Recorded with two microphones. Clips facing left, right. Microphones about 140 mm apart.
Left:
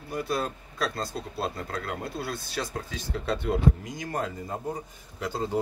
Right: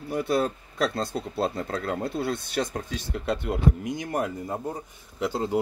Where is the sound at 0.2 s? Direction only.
25° right (ahead or behind).